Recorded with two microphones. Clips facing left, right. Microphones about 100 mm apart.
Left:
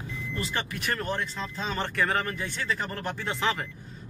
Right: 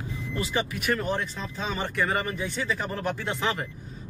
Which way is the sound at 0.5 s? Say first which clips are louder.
Right 5 dB; 5° right (ahead or behind).